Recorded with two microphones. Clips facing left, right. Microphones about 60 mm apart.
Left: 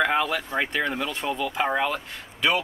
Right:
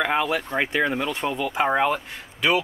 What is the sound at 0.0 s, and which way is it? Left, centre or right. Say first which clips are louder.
Speech: even; centre.